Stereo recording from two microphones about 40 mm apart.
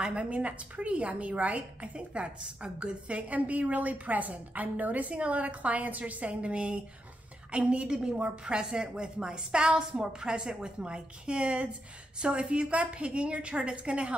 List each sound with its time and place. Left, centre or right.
0.0 s a woman's voice: right
6.4 s a woman's voice: right